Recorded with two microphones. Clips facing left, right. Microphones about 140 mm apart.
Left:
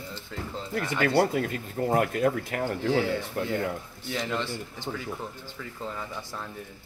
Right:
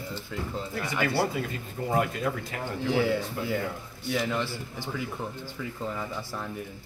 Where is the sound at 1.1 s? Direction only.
55° left (ahead or behind).